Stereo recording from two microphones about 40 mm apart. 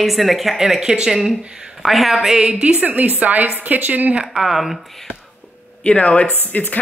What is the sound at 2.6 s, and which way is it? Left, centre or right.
A woman's voice, right.